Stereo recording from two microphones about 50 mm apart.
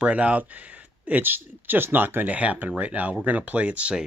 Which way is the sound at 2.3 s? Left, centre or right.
Right.